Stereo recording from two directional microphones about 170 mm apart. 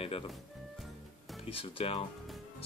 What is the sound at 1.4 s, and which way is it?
Speech, 35° left (ahead or behind).